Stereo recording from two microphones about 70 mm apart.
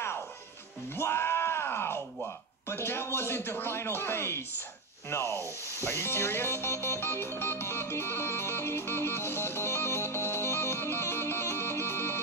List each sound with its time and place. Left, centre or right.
0.9 s yell: left
2.7 s speech: left
5.9 s music: left